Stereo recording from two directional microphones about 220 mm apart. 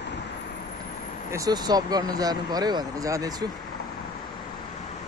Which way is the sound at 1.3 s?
15° right (ahead or behind).